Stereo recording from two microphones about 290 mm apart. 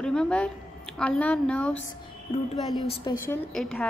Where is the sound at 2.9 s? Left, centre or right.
Centre.